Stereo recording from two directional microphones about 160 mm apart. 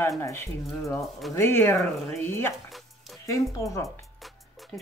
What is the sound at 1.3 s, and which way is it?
Speech, 15° left (ahead or behind).